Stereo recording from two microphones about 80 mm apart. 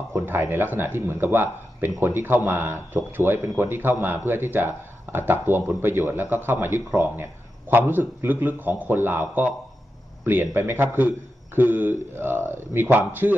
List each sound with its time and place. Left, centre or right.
0.1 s a man's voice: right
10.2 s a man's voice: right